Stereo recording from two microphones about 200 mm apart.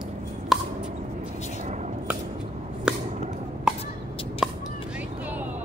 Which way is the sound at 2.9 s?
5° right (ahead or behind).